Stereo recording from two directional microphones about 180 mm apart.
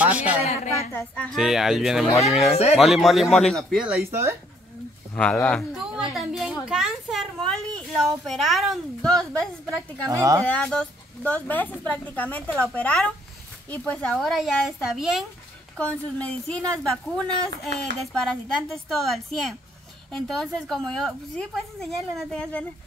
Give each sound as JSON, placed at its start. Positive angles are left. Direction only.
{"t": 0.0, "sound": "a sound", "side_deg": -10}
{"t": 0.4, "sound": "a sound", "side_deg": 35}
{"t": 0.9, "sound": "a woman's voice", "side_deg": 5}
{"t": 4.1, "sound": "speech", "side_deg": -15}
{"t": 5.1, "sound": "a woman's voice", "side_deg": 5}
{"t": 10.0, "sound": "speech", "side_deg": -20}
{"t": 10.5, "sound": "a woman's voice", "side_deg": 5}